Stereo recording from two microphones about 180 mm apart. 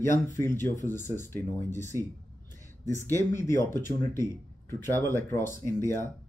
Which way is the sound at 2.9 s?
15° left (ahead or behind).